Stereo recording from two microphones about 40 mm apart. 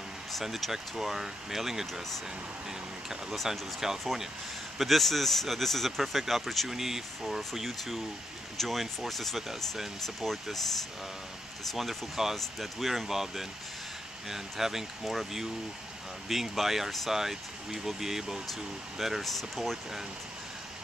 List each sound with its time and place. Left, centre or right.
0.3 s speech: centre
3.4 s speech: centre
4.7 s speech: centre
11.7 s speech: centre